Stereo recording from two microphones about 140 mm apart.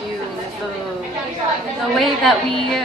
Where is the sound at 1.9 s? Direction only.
Centre (ahead or behind).